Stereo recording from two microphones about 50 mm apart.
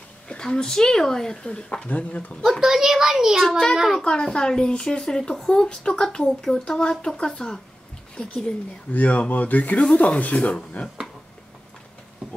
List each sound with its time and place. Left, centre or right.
0.3 s speech: centre
1.9 s speech: left
2.6 s a child's voice: centre
3.4 s speech: centre
8.9 s speech: left